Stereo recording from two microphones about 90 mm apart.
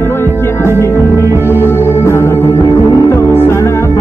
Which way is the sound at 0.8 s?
30° left (ahead or behind).